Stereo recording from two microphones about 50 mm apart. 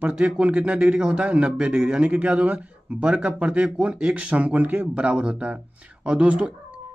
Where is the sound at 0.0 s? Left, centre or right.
Right.